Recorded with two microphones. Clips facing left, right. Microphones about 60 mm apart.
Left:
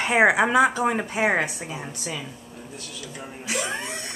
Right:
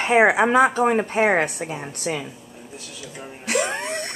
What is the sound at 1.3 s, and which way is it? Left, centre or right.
Speech, right.